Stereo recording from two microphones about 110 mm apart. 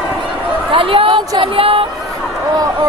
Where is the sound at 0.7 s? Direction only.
55° right (ahead or behind).